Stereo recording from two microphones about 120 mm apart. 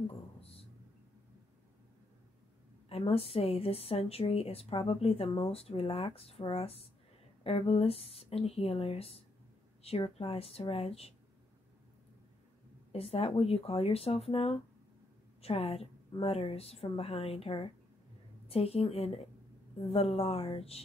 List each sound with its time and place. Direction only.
0.4 s a sound: 55° left (ahead or behind)
2.9 s a woman's voice: 55° left (ahead or behind)
12.9 s speech: 55° left (ahead or behind)